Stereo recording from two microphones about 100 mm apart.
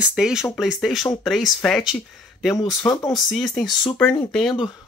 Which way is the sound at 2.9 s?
45° left (ahead or behind).